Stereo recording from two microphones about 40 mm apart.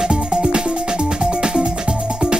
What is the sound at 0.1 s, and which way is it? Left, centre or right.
Music, centre.